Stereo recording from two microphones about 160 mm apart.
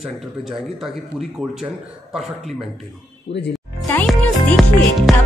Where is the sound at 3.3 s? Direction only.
90° left.